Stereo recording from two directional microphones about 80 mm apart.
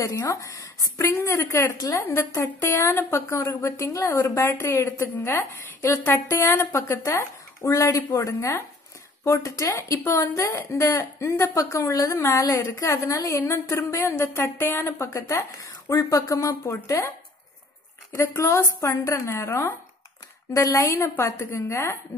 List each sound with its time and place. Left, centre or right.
0.0 s speech: left
2.0 s speech: left
15.0 s speech: left
18.1 s speech: left
20.5 s speech: left